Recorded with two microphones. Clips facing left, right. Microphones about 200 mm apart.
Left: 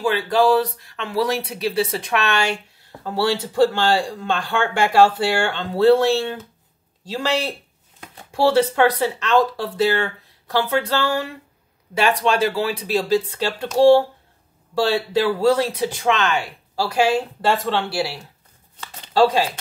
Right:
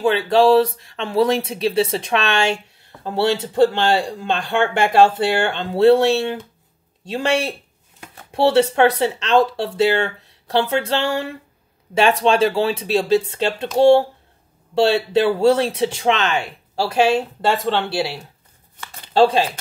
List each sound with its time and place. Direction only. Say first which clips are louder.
0.0 s speech: right 3 dB; 25° right (ahead or behind)